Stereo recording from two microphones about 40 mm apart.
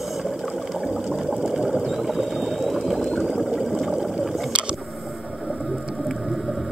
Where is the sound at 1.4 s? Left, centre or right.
Centre.